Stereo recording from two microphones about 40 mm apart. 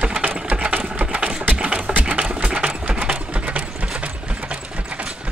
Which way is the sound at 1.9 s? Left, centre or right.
Right.